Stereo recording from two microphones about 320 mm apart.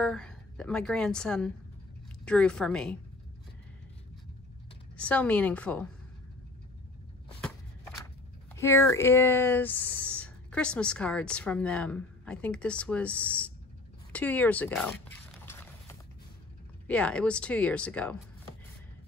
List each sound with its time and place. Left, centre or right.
0.0 s speech: centre
4.9 s speech: centre
8.5 s speech: centre
14.1 s a sound: centre
16.8 s speech: centre